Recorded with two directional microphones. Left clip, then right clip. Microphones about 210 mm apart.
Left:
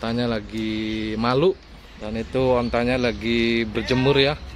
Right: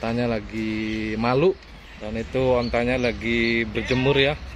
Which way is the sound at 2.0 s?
10° left (ahead or behind).